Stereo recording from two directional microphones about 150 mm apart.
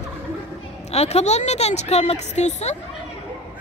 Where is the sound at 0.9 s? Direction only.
45° left (ahead or behind).